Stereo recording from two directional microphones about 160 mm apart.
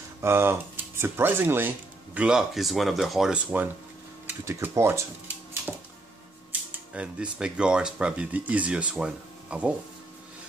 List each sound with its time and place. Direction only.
0.2 s speech: 15° right (ahead or behind)
4.5 s speech: 15° right (ahead or behind)
5.7 s music: centre (ahead or behind)
6.9 s speech: 5° right (ahead or behind)